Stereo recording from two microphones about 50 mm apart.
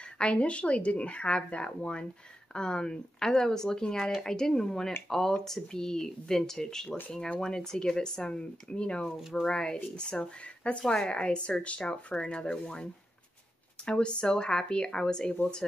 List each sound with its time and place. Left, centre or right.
0.2 s speech: left